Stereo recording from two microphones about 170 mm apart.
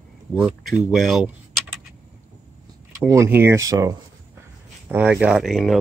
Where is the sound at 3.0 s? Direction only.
15° right (ahead or behind).